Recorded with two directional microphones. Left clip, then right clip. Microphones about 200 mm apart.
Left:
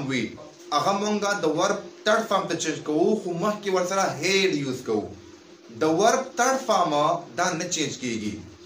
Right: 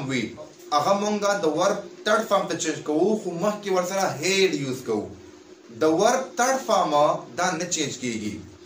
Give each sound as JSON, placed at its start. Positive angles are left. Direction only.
{"t": 0.7, "sound": "a man's voice", "side_deg": 15}